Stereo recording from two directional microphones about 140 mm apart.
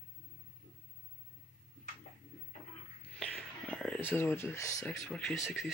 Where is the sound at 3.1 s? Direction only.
10° left (ahead or behind).